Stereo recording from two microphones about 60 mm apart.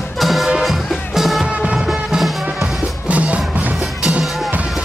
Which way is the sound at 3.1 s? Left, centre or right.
Right.